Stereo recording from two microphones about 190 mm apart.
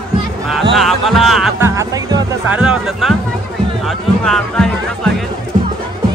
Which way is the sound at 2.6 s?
Centre (ahead or behind).